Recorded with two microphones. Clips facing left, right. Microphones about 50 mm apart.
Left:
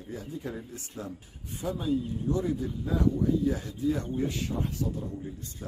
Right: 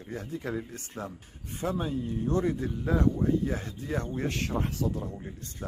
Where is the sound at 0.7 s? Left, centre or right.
Right.